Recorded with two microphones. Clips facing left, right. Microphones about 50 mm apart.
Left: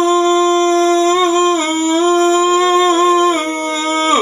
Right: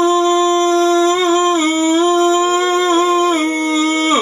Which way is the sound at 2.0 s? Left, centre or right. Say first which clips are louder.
Left 3 dB; left.